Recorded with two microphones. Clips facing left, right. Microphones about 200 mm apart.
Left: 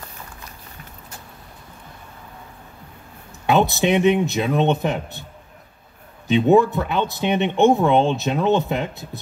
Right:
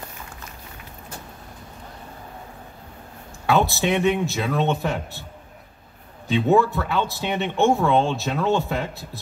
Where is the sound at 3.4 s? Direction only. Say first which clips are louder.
Left 3 dB; 20° left (ahead or behind).